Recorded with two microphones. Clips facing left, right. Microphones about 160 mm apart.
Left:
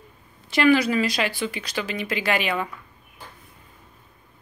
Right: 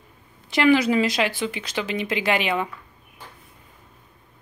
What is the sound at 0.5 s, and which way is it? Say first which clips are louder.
A woman's voice: right 1 dB; 20° right (ahead or behind).